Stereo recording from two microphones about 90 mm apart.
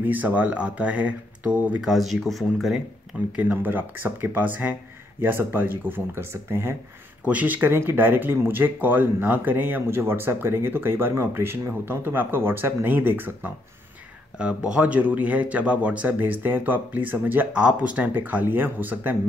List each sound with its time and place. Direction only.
0.0 s speech: 20° right (ahead or behind); by 2.8 s centre (ahead or behind)
3.3 s speech: 20° right (ahead or behind)
7.2 s speech: 15° right (ahead or behind)
14.4 s speech: 10° right (ahead or behind)
17.5 s speech: 10° right (ahead or behind)